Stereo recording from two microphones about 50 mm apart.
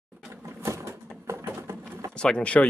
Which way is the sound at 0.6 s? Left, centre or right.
Right.